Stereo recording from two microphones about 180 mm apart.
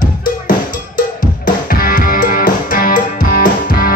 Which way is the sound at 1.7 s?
50° left (ahead or behind).